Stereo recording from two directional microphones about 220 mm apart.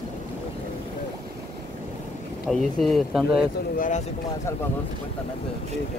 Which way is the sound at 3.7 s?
35° left (ahead or behind).